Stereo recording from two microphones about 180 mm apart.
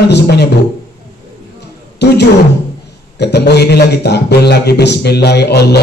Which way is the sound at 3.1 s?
70° left (ahead or behind).